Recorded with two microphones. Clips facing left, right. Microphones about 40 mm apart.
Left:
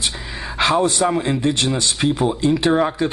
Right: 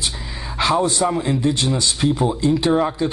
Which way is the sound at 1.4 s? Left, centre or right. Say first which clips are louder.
Even; left.